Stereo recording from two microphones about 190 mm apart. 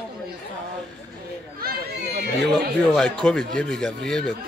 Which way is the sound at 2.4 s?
5° left (ahead or behind).